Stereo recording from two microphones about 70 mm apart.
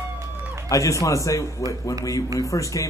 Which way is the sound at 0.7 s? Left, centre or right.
Left.